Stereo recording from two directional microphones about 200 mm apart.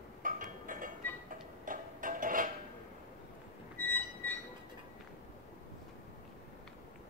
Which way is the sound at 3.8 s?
10° left (ahead or behind).